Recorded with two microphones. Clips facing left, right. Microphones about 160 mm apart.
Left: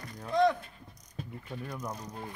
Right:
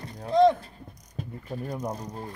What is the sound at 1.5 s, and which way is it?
Speech, 40° right (ahead or behind).